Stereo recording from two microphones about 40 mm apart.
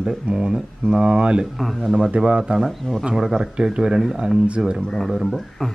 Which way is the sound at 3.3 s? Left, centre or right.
Right.